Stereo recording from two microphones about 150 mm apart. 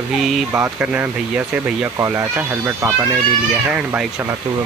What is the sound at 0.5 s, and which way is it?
Speech, 10° right (ahead or behind).